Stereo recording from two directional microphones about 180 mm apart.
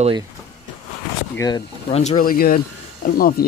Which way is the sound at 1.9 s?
40° left (ahead or behind).